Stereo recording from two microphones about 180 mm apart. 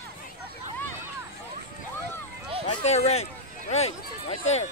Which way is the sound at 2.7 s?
35° left (ahead or behind).